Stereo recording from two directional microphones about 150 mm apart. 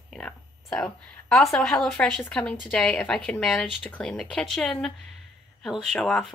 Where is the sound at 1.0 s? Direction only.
Centre (ahead or behind).